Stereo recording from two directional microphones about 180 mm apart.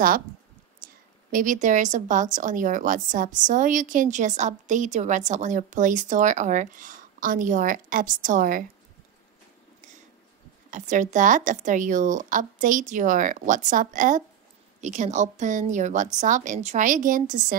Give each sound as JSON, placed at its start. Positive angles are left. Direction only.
{"t": 0.8, "sound": "a sound", "side_deg": -50}
{"t": 1.3, "sound": "a woman's voice", "side_deg": -45}
{"t": 10.7, "sound": "a woman's voice", "side_deg": -45}